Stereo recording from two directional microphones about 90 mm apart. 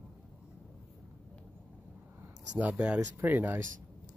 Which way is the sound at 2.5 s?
15° right (ahead or behind).